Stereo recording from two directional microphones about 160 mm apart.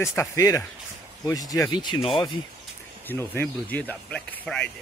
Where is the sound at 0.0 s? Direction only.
15° left (ahead or behind).